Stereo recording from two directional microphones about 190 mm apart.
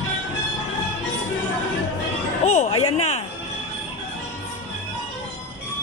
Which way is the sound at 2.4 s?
35° left (ahead or behind).